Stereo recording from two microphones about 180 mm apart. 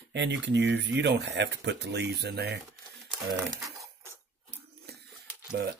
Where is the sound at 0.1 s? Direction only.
80° right.